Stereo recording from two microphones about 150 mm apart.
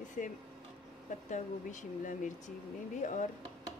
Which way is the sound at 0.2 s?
60° left (ahead or behind).